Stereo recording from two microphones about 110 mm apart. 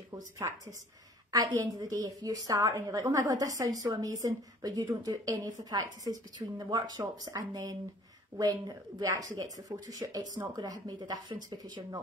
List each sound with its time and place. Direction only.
0.4 s a woman's voice: 30° right (ahead or behind)